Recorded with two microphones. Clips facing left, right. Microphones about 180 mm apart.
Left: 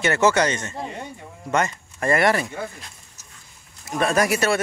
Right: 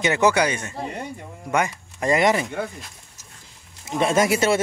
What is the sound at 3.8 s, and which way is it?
Speech, 20° right (ahead or behind).